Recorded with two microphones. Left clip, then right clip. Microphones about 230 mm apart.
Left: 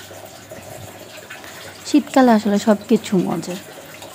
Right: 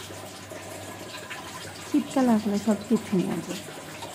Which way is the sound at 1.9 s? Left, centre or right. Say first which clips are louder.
Left 10 dB; centre.